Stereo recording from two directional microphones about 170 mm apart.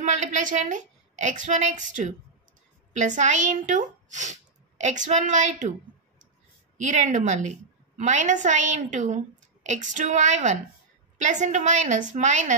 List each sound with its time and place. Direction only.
0.0 s a woman's voice: 45° right (ahead or behind)
6.8 s a woman's voice: 45° right (ahead or behind)